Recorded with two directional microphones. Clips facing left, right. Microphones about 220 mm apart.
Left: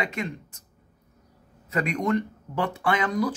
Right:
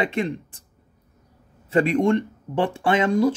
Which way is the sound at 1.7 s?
30° right (ahead or behind).